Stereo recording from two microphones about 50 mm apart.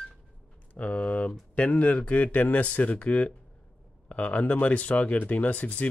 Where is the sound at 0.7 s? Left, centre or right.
Left.